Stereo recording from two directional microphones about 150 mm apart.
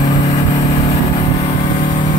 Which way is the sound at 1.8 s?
30° left (ahead or behind).